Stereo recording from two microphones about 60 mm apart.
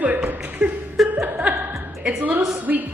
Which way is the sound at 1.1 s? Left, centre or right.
Right.